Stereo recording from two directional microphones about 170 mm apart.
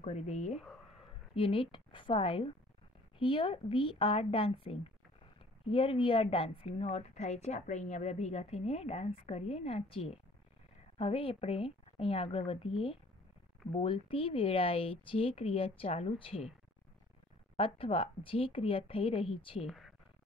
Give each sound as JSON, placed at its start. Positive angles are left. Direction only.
{"t": 0.0, "sound": "a woman's voice", "side_deg": 40}
{"t": 0.6, "sound": "a sound", "side_deg": 0}
{"t": 1.3, "sound": "a woman's voice", "side_deg": 30}
{"t": 17.6, "sound": "a woman's voice", "side_deg": 30}
{"t": 19.6, "sound": "speech", "side_deg": 0}